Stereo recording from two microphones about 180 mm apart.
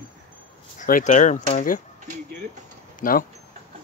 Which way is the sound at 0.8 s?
45° left (ahead or behind).